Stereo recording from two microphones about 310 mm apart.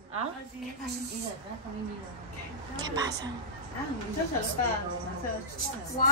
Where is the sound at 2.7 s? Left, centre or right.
Centre.